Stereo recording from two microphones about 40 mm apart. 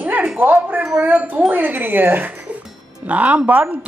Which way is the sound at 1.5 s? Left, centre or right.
Right.